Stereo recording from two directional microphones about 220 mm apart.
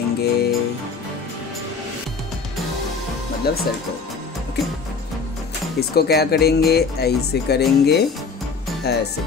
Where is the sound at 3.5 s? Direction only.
45° left (ahead or behind).